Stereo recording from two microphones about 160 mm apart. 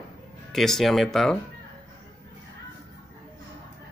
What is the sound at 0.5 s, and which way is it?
Speech, centre (ahead or behind).